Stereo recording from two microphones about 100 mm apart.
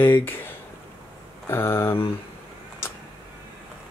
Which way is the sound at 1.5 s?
25° left (ahead or behind).